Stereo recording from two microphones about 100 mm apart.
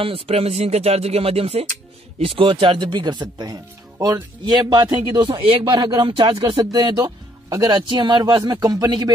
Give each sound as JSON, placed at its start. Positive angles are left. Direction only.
{"t": 0.0, "sound": "speech", "side_deg": -70}
{"t": 2.1, "sound": "speech", "side_deg": -65}